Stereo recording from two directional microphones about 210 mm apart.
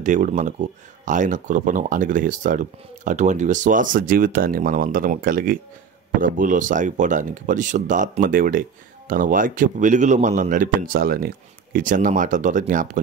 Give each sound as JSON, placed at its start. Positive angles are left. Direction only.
{"t": 0.0, "sound": "speech", "side_deg": -35}